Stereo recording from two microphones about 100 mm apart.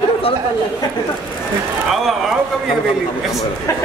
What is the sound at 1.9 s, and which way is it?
Speech, centre (ahead or behind).